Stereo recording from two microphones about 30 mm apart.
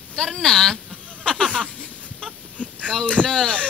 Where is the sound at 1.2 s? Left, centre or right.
Left.